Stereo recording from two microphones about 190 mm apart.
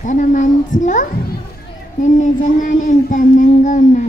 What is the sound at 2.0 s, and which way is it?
Child singing, 40° left (ahead or behind).